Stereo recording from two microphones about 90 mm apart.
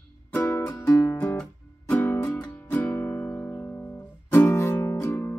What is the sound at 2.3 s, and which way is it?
Music, 15° left (ahead or behind).